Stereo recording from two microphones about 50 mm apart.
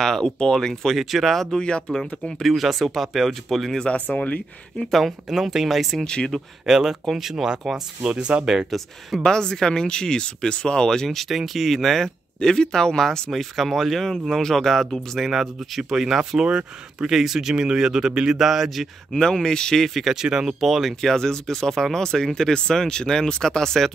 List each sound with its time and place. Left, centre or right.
0.0 s speech: centre
1.6 s speech: centre
2.4 s speech: centre
3.9 s speech: left
4.9 s speech: centre
6.0 s speech: centre
6.6 s speech: centre
8.6 s speech: centre
9.2 s speech: centre
19.1 s speech: centre
20.2 s speech: centre
21.1 s speech: centre